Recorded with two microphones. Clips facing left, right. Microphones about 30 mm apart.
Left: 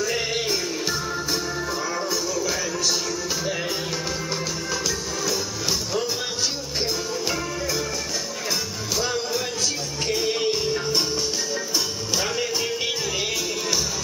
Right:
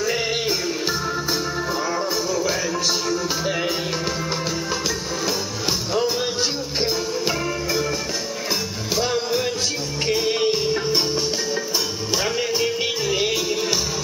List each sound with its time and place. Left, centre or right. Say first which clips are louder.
0.0 s music: right 2 dB; centre
2.0 s music: right 3 dB; centre
6.8 s music: right 3 dB; centre
8.9 s music: right 4 dB; centre